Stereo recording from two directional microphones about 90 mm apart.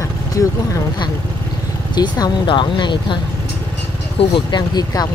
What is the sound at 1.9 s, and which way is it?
Speech, 50° left (ahead or behind).